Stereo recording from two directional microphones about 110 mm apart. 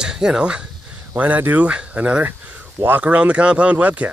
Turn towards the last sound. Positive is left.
turn(degrees=-15)  # may be behind; listen again after turning